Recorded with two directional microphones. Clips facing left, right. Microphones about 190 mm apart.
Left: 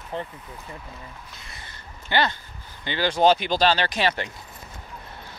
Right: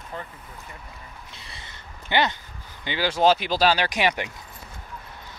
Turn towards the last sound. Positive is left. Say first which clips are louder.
# even
turn(degrees=-15)  # may be behind; listen again after turning